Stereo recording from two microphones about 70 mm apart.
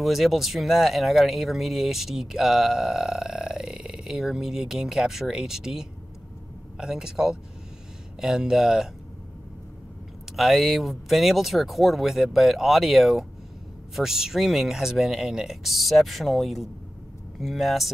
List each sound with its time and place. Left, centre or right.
0.0 s speech: centre
10.3 s speech: centre